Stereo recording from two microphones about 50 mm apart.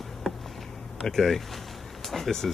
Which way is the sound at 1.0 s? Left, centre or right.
Centre.